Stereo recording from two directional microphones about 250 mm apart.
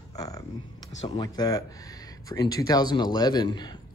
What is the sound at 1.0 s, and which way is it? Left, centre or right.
A man's voice, centre.